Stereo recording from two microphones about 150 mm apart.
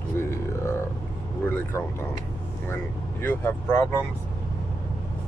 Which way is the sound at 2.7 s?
15° left (ahead or behind).